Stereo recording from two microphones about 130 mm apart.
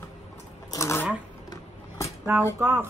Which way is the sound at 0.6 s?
25° left (ahead or behind).